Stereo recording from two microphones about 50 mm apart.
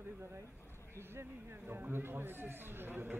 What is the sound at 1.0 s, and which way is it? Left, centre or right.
A man's voice, right.